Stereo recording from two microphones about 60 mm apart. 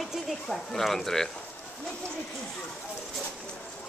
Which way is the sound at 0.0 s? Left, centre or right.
Centre.